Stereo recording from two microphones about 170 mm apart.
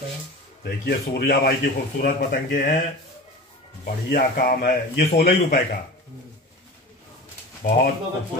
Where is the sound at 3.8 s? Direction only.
60° left (ahead or behind).